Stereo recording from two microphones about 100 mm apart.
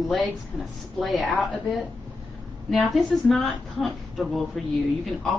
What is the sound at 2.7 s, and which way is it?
A woman's voice, centre (ahead or behind).